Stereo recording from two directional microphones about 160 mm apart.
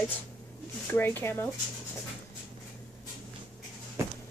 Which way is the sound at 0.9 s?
15° left (ahead or behind).